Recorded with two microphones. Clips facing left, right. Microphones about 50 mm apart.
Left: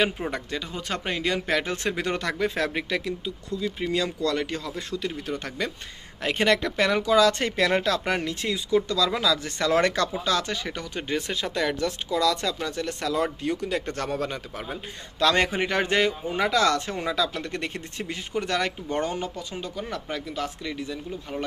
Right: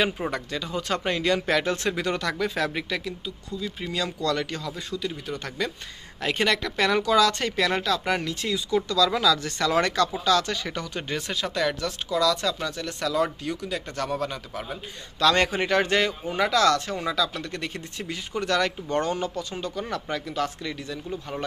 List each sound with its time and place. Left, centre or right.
0.3 s speech: centre
1.8 s speech: left
5.3 s speech: left
10.5 s speech: centre
19.6 s speech: centre